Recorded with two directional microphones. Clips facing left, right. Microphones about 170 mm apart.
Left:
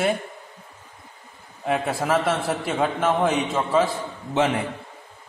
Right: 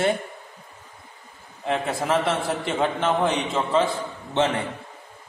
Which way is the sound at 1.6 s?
10° left (ahead or behind).